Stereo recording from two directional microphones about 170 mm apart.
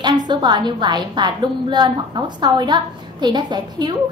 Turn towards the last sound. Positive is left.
turn(degrees=-25)  # may be behind; listen again after turning